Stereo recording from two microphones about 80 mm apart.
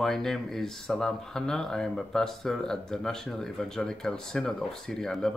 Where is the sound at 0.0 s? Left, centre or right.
Centre.